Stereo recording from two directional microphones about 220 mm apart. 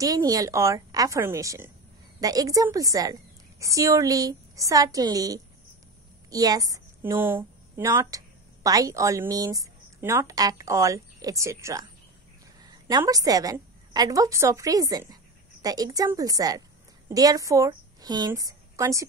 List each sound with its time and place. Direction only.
0.0 s a woman's voice: 15° right (ahead or behind)